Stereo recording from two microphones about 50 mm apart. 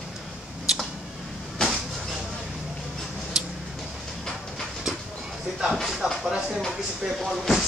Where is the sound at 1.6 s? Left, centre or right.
Centre.